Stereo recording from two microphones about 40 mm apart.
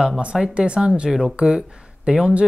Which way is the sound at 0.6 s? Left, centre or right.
Right.